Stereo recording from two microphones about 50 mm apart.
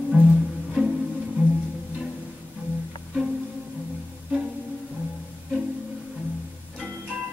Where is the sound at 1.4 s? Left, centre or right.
Right.